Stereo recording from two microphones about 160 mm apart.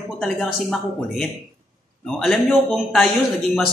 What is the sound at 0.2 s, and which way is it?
A man's voice, centre (ahead or behind).